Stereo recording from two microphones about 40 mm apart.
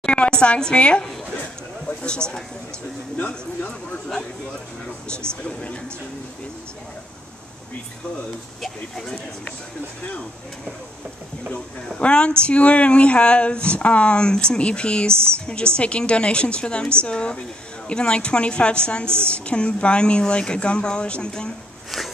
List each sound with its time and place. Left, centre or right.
0.0 s a woman's voice: left
3.2 s speech: left
5.1 s speech: left
8.6 s speech: centre
12.0 s speech: left
19.0 s a woman's voice: right
19.3 s speech: left